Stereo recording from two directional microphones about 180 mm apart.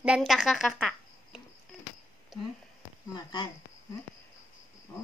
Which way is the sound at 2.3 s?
Centre (ahead or behind).